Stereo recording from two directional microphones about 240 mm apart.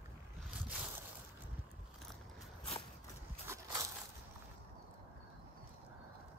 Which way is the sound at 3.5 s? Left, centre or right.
Centre.